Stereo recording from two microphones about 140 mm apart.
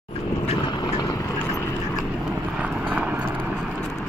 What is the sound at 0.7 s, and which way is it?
Vehicle, 30° left (ahead or behind).